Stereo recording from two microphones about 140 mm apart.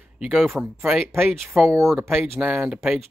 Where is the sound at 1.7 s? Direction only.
20° right (ahead or behind).